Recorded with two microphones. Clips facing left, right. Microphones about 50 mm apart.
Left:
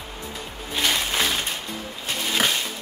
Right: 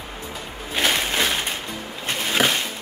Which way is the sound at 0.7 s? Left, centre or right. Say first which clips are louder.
Right 2 dB; right.